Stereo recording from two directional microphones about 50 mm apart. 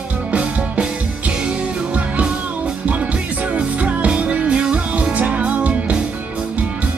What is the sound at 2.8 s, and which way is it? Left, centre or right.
Music, right.